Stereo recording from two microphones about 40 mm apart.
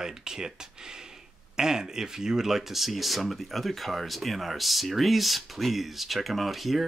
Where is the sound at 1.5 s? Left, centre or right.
Centre.